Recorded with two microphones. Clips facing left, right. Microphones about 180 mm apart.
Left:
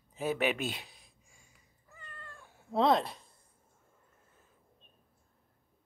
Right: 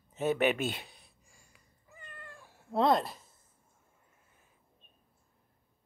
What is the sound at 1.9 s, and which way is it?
Cat, 15° right (ahead or behind).